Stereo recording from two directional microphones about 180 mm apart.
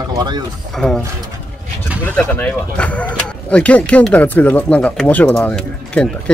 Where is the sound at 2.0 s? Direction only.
10° left (ahead or behind).